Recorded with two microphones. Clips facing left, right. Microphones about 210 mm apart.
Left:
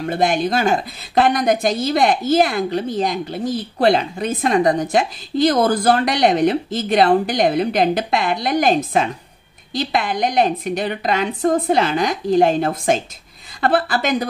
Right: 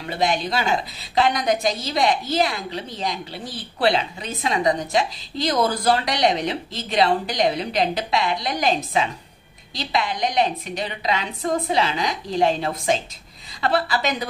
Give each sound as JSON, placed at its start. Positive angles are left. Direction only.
{"t": 0.0, "sound": "a woman's voice", "side_deg": 50}